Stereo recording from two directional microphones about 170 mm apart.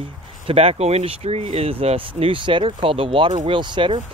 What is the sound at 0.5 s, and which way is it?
Speech, 35° right (ahead or behind).